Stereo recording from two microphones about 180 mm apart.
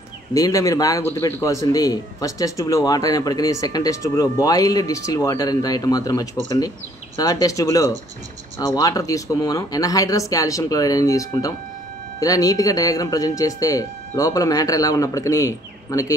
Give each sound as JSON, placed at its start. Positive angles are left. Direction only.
{"t": 0.3, "sound": "speech", "side_deg": 20}